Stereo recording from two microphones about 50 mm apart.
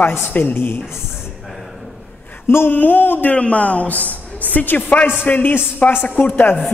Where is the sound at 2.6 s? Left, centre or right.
Left.